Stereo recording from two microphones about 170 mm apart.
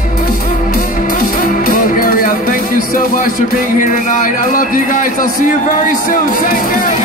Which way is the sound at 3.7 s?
50° left (ahead or behind).